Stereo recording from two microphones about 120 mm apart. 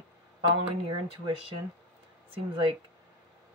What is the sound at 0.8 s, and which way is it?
Speech, 40° right (ahead or behind).